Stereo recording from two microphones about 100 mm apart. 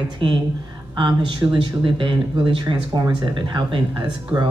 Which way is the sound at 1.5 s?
55° right (ahead or behind).